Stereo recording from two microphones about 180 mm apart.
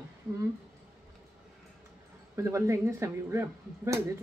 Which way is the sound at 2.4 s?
15° right (ahead or behind).